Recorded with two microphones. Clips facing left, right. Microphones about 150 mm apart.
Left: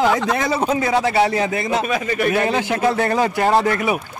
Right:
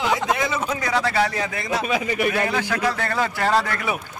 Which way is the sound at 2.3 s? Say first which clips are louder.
Left 4 dB; 20° left (ahead or behind).